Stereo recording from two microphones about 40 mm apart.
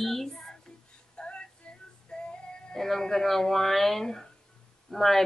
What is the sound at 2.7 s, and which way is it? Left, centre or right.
Speech, centre.